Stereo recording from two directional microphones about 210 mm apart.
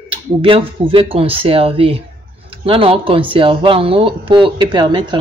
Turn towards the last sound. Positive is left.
turn(degrees=-20)  # may be behind; listen again after turning